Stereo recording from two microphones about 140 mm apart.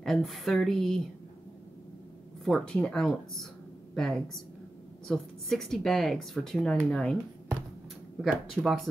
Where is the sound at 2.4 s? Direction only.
5° left (ahead or behind).